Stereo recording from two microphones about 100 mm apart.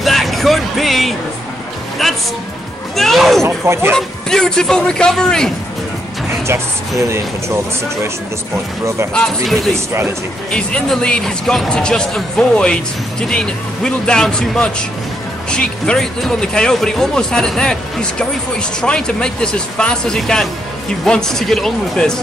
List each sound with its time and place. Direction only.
0.0 s music: centre (ahead or behind)
3.0 s speech: centre (ahead or behind)
3.4 s speech: 25° right (ahead or behind)
3.9 s speech: 5° left (ahead or behind)
6.4 s speech: 25° right (ahead or behind)
9.1 s speech: 5° left (ahead or behind)